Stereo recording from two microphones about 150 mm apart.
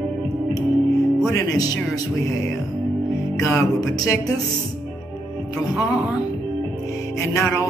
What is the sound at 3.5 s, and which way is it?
Music, 20° left (ahead or behind).